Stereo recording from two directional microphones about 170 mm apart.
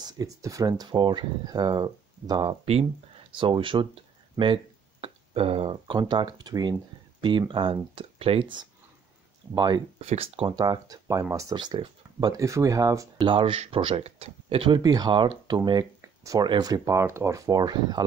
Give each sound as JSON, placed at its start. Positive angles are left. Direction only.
{"t": 0.0, "sound": "speech", "side_deg": -20}
{"t": 2.6, "sound": "speech", "side_deg": -35}
{"t": 4.4, "sound": "speech", "side_deg": -15}
{"t": 5.0, "sound": "speech", "side_deg": -35}
{"t": 9.9, "sound": "speech", "side_deg": -35}
{"t": 10.6, "sound": "speech", "side_deg": -20}
{"t": 13.3, "sound": "speech", "side_deg": -30}